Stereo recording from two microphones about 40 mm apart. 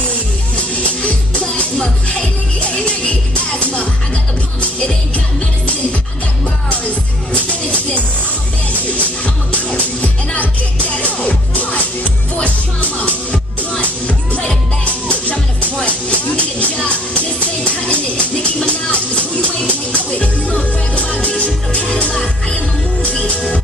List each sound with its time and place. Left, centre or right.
0.6 s music: left
7.3 s music: left
13.0 s music: left